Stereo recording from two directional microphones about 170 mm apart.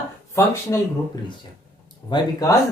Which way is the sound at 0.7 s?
15° left (ahead or behind).